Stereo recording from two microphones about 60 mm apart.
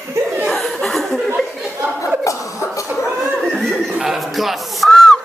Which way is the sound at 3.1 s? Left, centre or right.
Right.